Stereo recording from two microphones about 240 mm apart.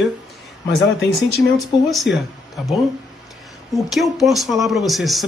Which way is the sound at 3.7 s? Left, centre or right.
Centre.